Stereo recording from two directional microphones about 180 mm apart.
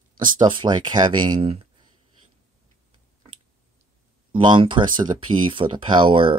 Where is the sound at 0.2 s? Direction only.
25° right (ahead or behind).